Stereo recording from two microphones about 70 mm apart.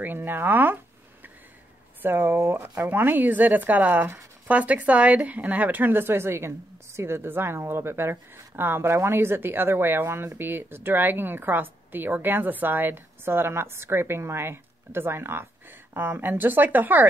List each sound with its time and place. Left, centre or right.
0.0 s a woman's voice: right
2.0 s a woman's voice: right